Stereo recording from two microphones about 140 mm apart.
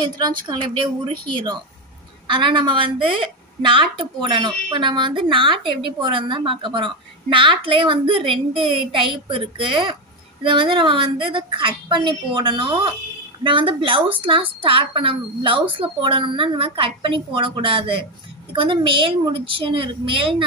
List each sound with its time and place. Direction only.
0.0 s speech: 35° right (ahead or behind)